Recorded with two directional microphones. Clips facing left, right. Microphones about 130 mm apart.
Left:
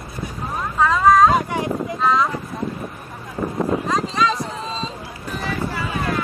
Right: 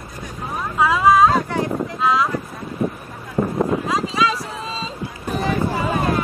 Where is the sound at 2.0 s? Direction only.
5° right (ahead or behind).